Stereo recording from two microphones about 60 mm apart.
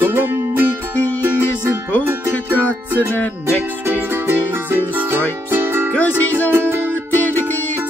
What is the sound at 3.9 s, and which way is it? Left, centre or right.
Music, right.